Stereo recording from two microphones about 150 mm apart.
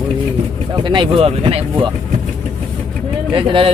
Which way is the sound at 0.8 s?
35° right (ahead or behind).